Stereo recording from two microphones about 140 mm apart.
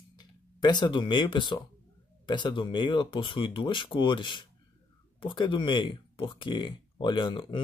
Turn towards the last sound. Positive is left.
turn(degrees=35)  # may be behind; listen again after turning